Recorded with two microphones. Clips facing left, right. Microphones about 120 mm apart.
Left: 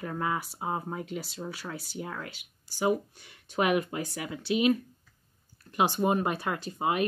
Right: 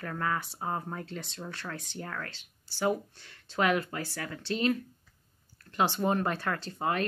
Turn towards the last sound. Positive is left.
turn(degrees=15)  # may be behind; listen again after turning